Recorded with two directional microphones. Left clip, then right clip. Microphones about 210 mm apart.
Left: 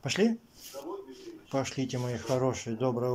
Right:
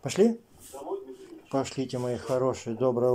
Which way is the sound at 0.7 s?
30° right (ahead or behind).